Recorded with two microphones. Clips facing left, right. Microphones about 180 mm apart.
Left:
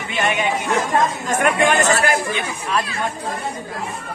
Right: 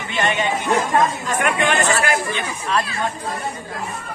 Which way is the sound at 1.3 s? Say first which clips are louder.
Left 3 dB; 45° left (ahead or behind).